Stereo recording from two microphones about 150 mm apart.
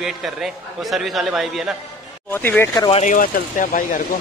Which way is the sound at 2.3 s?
15° left (ahead or behind).